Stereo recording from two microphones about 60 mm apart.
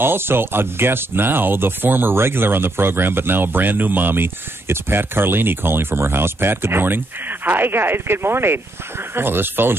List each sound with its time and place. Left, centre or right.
0.0 s speech: right